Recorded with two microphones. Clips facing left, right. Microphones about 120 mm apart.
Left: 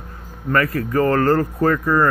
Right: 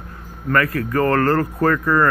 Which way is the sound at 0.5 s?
30° left (ahead or behind).